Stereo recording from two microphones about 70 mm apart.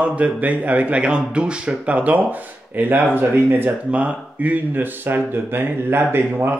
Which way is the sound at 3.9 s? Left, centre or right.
Centre.